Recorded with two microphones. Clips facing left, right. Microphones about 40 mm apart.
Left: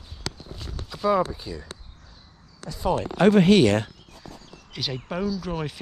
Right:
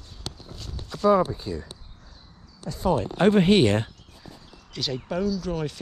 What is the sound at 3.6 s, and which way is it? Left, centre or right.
Speech, left.